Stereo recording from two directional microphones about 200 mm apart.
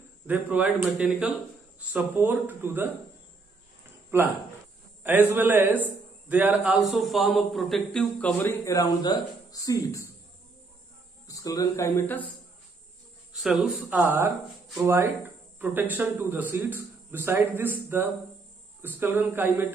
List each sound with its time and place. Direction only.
0.3 s a man's voice: 5° right (ahead or behind)
4.1 s a man's voice: 10° right (ahead or behind); by 10.0 s 15° left (ahead or behind)
11.2 s speech: 15° left (ahead or behind)
13.3 s a man's voice: centre (ahead or behind)
15.6 s a man's voice: 10° right (ahead or behind)